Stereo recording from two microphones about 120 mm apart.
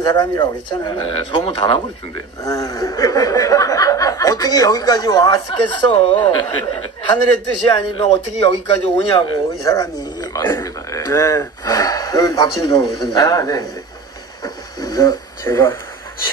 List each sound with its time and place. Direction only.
0.0 s chuckle: 35° left (ahead or behind)
2.4 s chuckle: 30° left (ahead or behind)
7.7 s speech: 50° left (ahead or behind)
9.6 s speech: 30° left (ahead or behind)
12.7 s chuckle: 35° left (ahead or behind)
14.4 s a sound: 30° left (ahead or behind)